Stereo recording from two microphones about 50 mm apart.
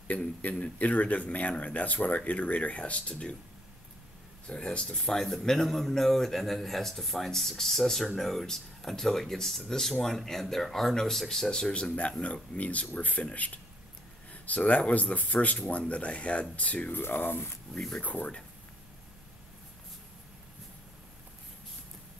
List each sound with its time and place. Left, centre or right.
0.1 s speech: left
4.5 s speech: centre
11.7 s speech: left
16.9 s speech: left
17.9 s speech: left